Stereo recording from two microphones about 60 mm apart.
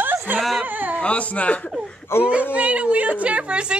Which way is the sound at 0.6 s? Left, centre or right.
Right.